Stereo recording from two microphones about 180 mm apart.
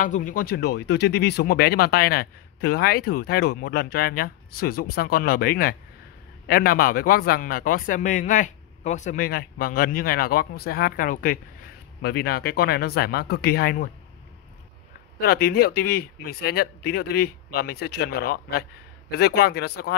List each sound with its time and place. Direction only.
0.0 s a man's voice: 45° left (ahead or behind)
15.1 s speech: 60° left (ahead or behind)